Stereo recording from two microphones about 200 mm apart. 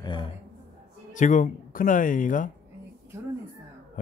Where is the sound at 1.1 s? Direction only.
40° left (ahead or behind).